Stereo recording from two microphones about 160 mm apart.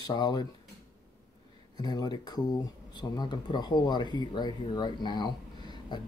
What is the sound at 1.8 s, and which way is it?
Speech, 25° left (ahead or behind).